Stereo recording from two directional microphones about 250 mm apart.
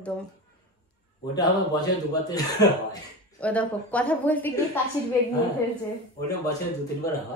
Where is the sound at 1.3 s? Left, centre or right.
Centre.